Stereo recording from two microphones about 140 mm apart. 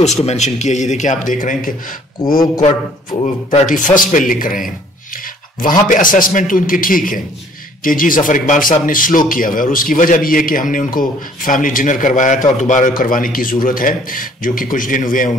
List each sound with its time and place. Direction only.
0.0 s a man's voice: 55° left (ahead or behind); by 2.4 s 85° left
2.6 s speech: 40° left (ahead or behind)
3.6 s a man's voice: 70° left (ahead or behind)